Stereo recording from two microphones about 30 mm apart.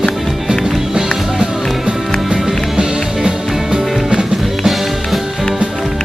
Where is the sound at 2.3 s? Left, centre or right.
Right.